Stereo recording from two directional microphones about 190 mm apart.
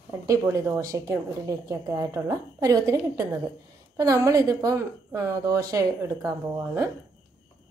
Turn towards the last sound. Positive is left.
turn(degrees=-15)  # may be behind; listen again after turning